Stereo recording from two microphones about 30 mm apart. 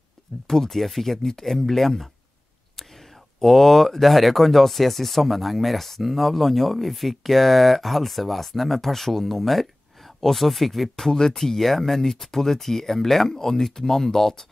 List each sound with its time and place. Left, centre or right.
0.5 s speech: centre
3.3 s speech: centre
11.1 s speech: centre